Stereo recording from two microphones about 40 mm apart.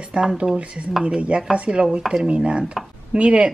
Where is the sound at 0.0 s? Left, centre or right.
Right.